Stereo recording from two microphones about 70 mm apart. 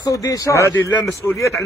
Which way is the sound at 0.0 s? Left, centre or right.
Left.